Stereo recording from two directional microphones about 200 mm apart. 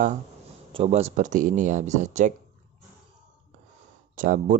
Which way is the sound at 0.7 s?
30° right (ahead or behind).